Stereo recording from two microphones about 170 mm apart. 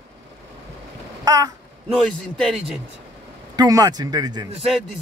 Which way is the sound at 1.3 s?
20° right (ahead or behind).